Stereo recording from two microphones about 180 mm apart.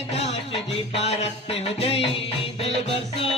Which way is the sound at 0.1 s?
35° left (ahead or behind).